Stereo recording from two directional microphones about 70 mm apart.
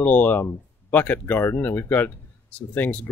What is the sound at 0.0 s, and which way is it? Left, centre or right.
Speech, left.